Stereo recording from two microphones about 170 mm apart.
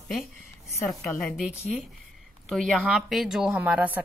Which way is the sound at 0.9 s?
Centre (ahead or behind).